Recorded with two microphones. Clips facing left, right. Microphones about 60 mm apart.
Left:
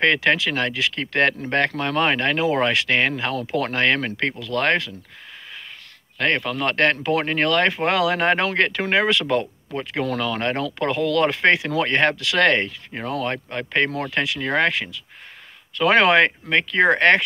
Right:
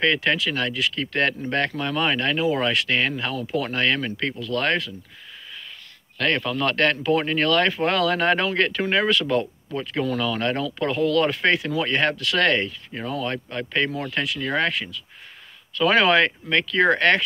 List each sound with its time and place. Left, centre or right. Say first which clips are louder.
0.3 s speech: left 3 dB; left
6.1 s speech: left 1 dB; left
14.1 s speech: left 3 dB; left
14.4 s speech: left 3 dB; left
15.7 s speech: left 2 dB; left
16.4 s speech: left 1 dB; left
16.8 s speech: left 3 dB; left